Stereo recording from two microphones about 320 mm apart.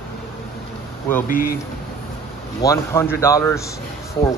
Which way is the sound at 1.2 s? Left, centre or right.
Left.